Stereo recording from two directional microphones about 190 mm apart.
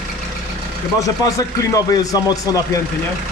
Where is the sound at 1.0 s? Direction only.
20° left (ahead or behind).